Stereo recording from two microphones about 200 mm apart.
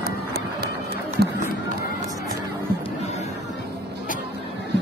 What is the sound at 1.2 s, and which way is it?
Speech, 55° right (ahead or behind).